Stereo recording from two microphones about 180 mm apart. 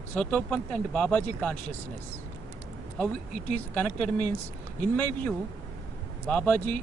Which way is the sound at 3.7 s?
5° left (ahead or behind).